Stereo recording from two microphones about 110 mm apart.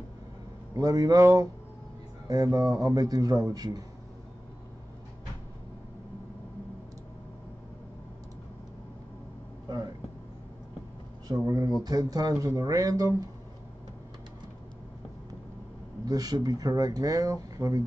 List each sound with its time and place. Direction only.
0.7 s speech: 35° right (ahead or behind)
9.7 s vehicle: 40° right (ahead or behind)
11.2 s speech: 35° right (ahead or behind)
16.1 s speech: 35° right (ahead or behind)